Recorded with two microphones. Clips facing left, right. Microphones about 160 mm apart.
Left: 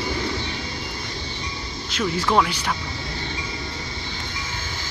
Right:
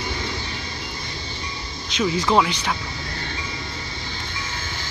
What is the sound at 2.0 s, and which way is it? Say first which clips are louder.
Speech: right 2 dB; 10° right (ahead or behind).